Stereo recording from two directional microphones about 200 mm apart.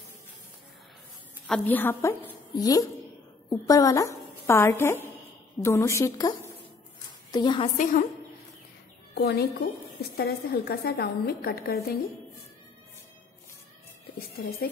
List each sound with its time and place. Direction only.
1.5 s a woman's voice: 10° left (ahead or behind); by 7.7 s 25° left (ahead or behind)
7.7 s a woman's voice: 40° left (ahead or behind)
9.1 s a woman's voice: 55° left (ahead or behind)
14.3 s a woman's voice: 50° left (ahead or behind)